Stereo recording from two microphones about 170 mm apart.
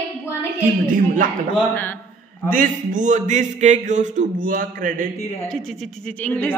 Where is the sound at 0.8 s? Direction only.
50° right (ahead or behind).